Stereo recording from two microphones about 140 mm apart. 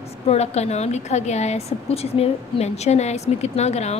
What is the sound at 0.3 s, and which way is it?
A woman's voice, 50° left (ahead or behind).